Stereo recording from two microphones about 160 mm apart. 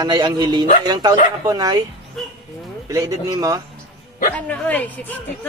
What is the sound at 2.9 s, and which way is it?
Speech, 20° right (ahead or behind).